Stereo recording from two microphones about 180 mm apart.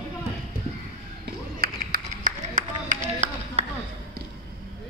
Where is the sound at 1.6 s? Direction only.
55° right (ahead or behind).